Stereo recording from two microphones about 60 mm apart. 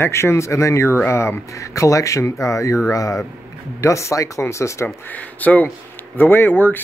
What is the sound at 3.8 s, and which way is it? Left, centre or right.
Speech, left.